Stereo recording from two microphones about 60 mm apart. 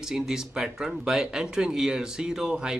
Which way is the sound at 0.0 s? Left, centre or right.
Centre.